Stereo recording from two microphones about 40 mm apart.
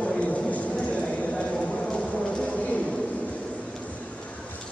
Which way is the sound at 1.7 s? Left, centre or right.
Centre.